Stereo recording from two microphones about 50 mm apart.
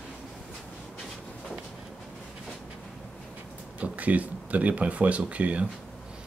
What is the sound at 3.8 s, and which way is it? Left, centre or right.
Speech, right.